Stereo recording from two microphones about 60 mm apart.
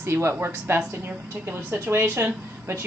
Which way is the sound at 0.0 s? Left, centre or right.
Right.